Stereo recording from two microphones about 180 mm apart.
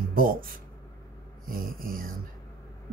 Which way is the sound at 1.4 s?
50° right (ahead or behind).